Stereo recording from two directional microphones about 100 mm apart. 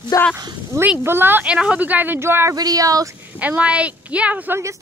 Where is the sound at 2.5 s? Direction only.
40° right (ahead or behind).